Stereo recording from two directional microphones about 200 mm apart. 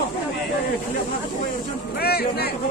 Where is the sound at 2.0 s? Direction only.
50° left (ahead or behind).